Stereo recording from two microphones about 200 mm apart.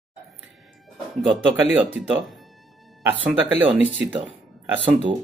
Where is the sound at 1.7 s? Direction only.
5° right (ahead or behind).